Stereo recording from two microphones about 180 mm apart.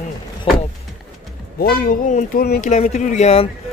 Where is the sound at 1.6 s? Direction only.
50° left (ahead or behind).